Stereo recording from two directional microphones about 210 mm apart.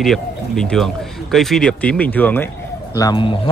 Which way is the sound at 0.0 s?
Centre (ahead or behind).